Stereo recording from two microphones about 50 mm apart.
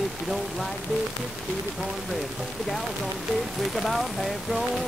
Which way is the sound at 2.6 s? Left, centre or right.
Centre.